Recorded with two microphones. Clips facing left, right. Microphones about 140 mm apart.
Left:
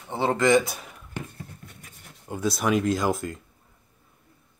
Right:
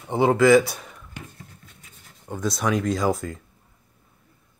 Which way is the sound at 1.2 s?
60° left (ahead or behind).